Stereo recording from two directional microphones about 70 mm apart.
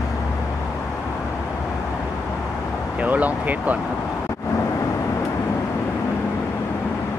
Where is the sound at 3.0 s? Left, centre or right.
Right.